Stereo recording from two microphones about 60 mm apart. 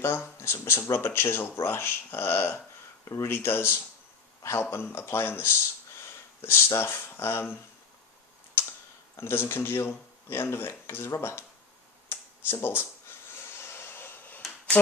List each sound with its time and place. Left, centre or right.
0.0 s a man's voice: left
9.1 s speech: left
12.1 s a sound: left